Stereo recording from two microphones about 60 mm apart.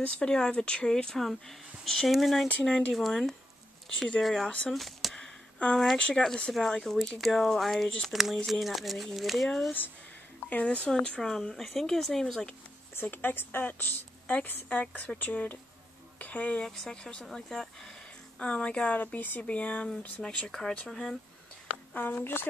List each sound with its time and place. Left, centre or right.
0.0 s speech: centre
2.6 s speech: centre
2.9 s speech: centre
5.2 s a sound: left
5.9 s speech: centre
10.5 s speech: left
10.9 s speech: centre
12.9 s speech: left
14.2 s a woman's voice: left
16.6 s speech: centre
18.4 s speech: left
20.2 s speech: centre
21.9 s speech: left